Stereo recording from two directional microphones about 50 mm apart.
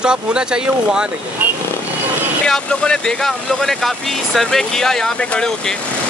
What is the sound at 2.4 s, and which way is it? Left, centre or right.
Speech, centre.